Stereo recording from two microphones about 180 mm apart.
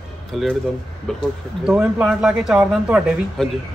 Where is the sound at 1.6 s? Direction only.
5° right (ahead or behind).